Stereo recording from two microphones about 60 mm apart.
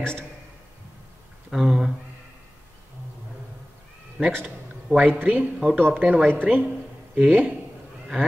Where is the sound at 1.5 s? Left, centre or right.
Centre.